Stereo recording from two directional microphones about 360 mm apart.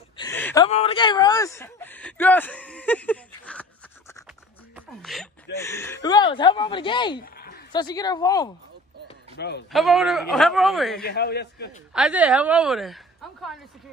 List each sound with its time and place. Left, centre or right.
0.2 s a sound: centre
0.7 s speech: centre
4.7 s speech: centre
7.3 s a sound: left
7.7 s speech: centre
9.4 s a man's voice: left
9.7 s a woman's voice: centre
11.1 s a man's voice: left
11.9 s a woman's voice: centre